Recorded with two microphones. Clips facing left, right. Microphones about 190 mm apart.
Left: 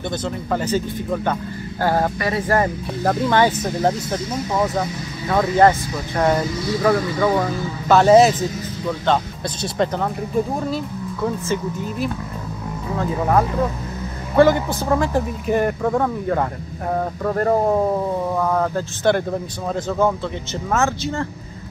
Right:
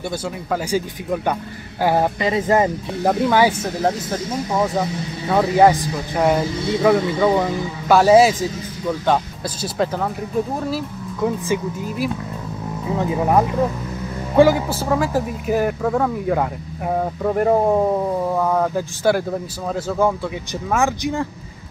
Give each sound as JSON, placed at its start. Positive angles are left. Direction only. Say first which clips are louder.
{"t": 0.5, "sound": "speech", "louder": "even", "side_deg": -10}
{"t": 5.3, "sound": "speech", "louder": "right 1 dB", "side_deg": -10}
{"t": 6.9, "sound": "speech", "louder": "right 2 dB", "side_deg": -20}
{"t": 8.0, "sound": "speech", "louder": "even", "side_deg": -5}
{"t": 11.1, "sound": "speech", "louder": "right 2 dB", "side_deg": -15}